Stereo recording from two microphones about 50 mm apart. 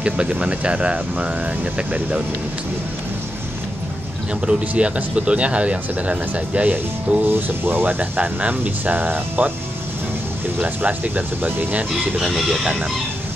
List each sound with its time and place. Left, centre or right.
0.0 s speech: right
4.5 s speech: right
10.6 s speech: right
11.9 s speech: centre